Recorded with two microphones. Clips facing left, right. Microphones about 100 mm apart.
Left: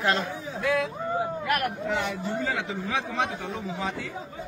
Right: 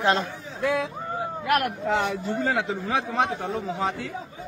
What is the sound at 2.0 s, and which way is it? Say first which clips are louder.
Speech: right 3 dB; 45° right (ahead or behind).